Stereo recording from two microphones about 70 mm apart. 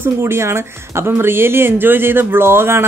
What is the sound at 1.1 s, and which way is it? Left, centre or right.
Speech, right.